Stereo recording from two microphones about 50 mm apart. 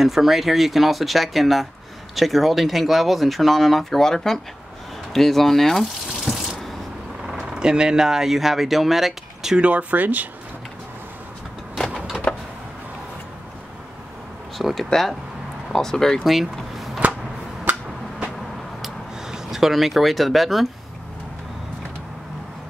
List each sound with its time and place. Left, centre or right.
0.0 s speech: centre
6.2 s water: centre
7.2 s speech: centre
9.6 s speech: right
11.7 s vehicle: centre
14.6 s speech: centre
16.3 s a sound: centre
18.8 s a sound: centre